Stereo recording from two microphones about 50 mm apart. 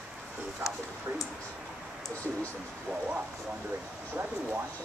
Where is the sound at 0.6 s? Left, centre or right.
Right.